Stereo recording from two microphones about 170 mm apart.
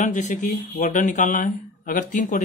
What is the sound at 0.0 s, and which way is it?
Speech, 45° left (ahead or behind).